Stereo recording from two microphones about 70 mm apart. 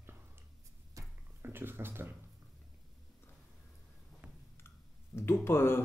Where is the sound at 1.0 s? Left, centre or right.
Right.